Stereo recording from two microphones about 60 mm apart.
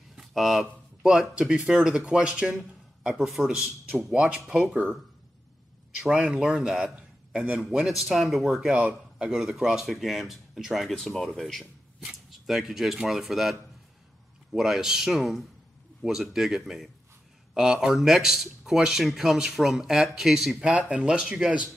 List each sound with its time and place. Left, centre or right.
0.1 s a sound: centre
1.0 s speech: centre
6.1 s speech: right; by 8.6 s centre
8.6 s speech: centre
20.6 s speech: centre